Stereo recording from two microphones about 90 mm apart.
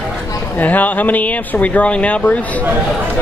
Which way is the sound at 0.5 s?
20° left (ahead or behind).